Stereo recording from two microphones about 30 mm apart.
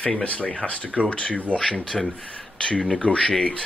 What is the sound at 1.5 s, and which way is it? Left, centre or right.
Speech, left.